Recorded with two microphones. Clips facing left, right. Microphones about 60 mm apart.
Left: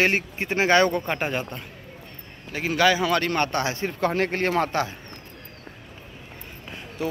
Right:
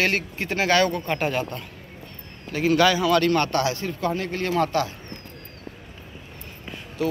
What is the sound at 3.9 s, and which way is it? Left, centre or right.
Speech, left.